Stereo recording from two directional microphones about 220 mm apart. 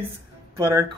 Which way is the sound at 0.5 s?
10° right (ahead or behind).